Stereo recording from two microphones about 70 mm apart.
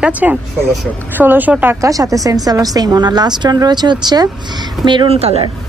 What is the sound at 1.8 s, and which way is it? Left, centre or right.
A woman's voice, right.